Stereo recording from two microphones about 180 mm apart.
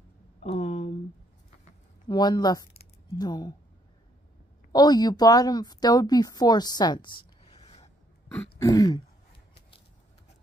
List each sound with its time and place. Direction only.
0.4 s a sound: 35° left (ahead or behind)
2.0 s speech: 25° left (ahead or behind)
4.7 s speech: 25° left (ahead or behind)
8.3 s throat clearing: 5° left (ahead or behind)
8.6 s speech: 20° left (ahead or behind)